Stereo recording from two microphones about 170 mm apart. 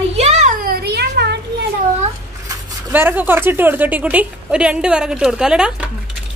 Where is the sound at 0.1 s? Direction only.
40° right (ahead or behind); by 1.4 s 75° right (ahead or behind).